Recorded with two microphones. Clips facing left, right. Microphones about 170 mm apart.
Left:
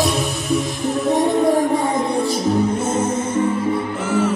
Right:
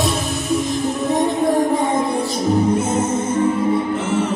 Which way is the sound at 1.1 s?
Centre (ahead or behind).